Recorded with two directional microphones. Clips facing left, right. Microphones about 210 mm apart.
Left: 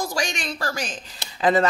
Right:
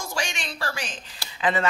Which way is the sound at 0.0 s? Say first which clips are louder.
Left 5 dB; 40° left (ahead or behind).